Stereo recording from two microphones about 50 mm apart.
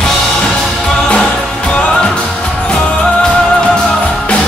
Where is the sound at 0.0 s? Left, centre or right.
Centre.